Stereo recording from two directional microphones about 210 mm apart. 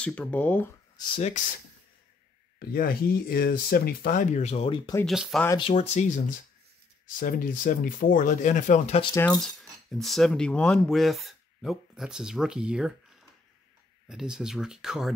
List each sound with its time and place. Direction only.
0.0 s speech: 5° left (ahead or behind)
0.9 s speech: 25° left (ahead or behind)
1.3 s speech: 40° left (ahead or behind)
2.7 s speech: 45° left (ahead or behind); by 5.0 s 20° left (ahead or behind)
5.0 s speech: centre (ahead or behind)
5.5 s speech: 25° left (ahead or behind)
9.1 s speech: 15° left (ahead or behind)
9.4 s speech: centre (ahead or behind)